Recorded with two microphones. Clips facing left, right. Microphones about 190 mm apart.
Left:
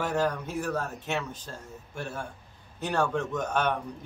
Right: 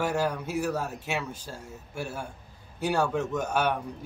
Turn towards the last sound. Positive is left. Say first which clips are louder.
# right 1 dB
turn(degrees=-10)  # may be behind; listen again after turning